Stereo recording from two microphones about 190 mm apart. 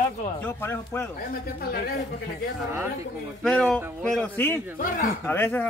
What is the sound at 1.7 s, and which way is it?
Speech, 55° left (ahead or behind).